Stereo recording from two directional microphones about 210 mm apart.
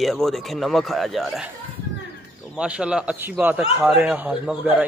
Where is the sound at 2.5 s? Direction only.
5° right (ahead or behind).